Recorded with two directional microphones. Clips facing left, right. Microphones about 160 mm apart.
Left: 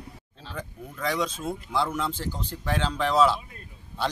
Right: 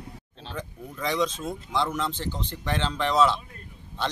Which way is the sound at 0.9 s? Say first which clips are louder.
Right 2 dB; 5° left (ahead or behind).